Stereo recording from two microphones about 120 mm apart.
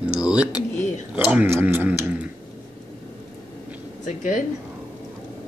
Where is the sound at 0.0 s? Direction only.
10° right (ahead or behind).